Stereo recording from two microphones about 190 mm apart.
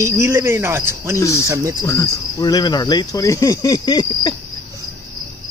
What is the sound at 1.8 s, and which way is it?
Cricket, 15° left (ahead or behind).